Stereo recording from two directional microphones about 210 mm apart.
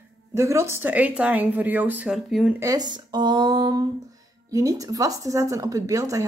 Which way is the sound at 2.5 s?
15° right (ahead or behind).